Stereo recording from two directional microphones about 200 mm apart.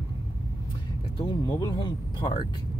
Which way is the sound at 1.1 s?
20° left (ahead or behind).